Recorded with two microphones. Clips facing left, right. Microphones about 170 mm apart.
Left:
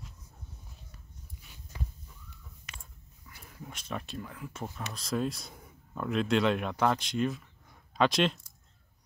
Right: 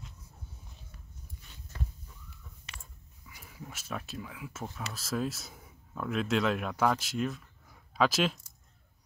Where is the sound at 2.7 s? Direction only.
30° right (ahead or behind).